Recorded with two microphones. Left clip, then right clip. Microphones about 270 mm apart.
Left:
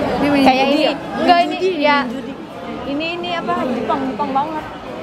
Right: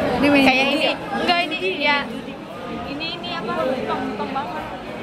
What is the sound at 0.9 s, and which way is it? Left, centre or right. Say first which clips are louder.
Chatter: left 6 dB; centre.